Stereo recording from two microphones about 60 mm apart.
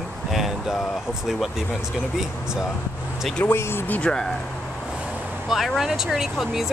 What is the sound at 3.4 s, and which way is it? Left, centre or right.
Speech, left.